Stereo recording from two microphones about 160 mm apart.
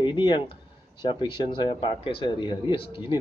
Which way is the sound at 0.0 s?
30° left (ahead or behind).